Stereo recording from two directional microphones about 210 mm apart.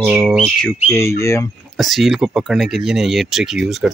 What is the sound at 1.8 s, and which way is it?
Speech, centre (ahead or behind).